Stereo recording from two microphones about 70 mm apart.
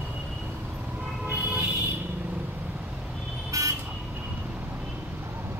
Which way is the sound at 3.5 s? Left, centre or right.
Right.